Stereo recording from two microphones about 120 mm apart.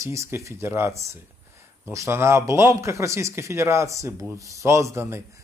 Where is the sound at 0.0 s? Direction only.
25° right (ahead or behind).